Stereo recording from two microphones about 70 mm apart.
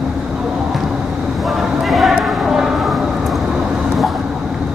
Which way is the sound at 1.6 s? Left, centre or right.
Centre.